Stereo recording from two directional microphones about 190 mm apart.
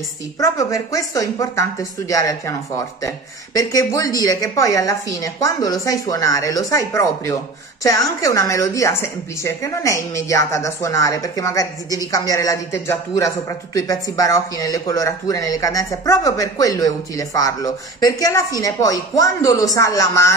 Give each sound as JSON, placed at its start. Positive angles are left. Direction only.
{"t": 0.4, "sound": "a woman's voice", "side_deg": 15}